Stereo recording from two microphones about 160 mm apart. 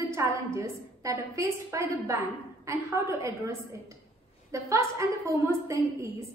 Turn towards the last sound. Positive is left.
turn(degrees=-20)  # may be behind; listen again after turning